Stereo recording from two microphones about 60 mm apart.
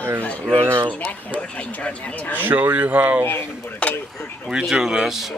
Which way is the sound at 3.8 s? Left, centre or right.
Left.